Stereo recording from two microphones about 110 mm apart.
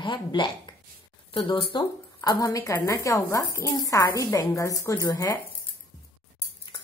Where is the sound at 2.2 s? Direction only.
35° left (ahead or behind).